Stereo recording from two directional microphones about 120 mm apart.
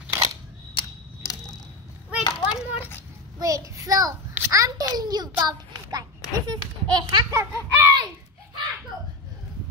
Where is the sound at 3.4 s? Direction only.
30° right (ahead or behind).